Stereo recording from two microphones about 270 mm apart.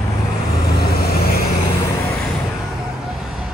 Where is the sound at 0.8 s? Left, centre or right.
Left.